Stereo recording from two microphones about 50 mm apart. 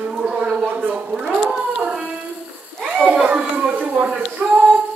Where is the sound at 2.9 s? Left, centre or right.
Right.